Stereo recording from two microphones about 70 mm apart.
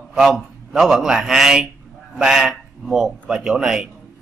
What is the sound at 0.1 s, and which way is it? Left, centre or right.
A man's voice, centre.